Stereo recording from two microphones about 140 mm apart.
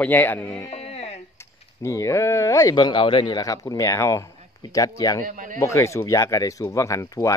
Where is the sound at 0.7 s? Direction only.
50° left (ahead or behind).